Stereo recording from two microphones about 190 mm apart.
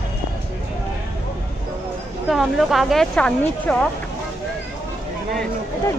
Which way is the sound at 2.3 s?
Centre (ahead or behind).